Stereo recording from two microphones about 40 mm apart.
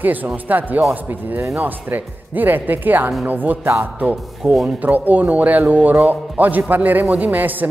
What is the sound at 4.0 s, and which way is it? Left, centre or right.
Speech, right.